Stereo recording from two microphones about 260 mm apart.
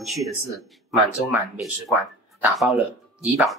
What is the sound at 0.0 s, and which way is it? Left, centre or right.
Speech, centre.